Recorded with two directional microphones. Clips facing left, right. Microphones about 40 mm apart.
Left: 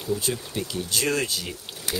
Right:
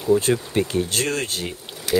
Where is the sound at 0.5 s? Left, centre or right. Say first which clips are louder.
Right 7 dB; right.